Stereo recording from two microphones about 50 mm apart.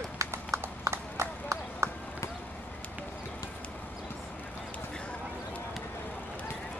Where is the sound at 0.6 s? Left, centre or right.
Right.